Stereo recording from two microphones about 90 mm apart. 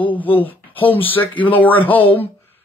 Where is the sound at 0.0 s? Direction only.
20° left (ahead or behind).